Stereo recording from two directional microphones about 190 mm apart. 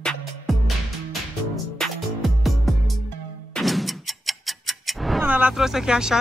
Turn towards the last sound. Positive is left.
turn(degrees=-5)  # may be behind; listen again after turning